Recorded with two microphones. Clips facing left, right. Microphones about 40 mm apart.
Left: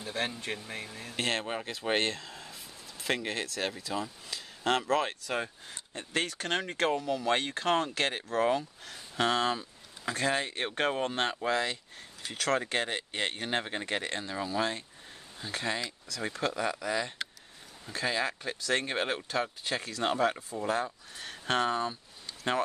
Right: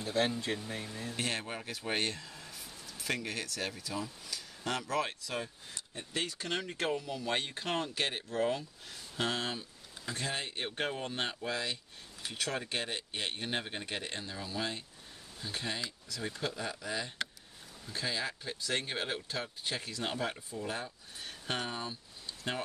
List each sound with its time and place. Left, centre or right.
0.0 s a sound: left
1.0 s speech: left
17.8 s speech: left
20.6 s speech: left